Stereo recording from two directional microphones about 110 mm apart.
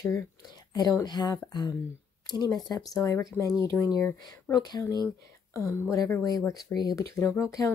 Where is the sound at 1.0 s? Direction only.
40° left (ahead or behind).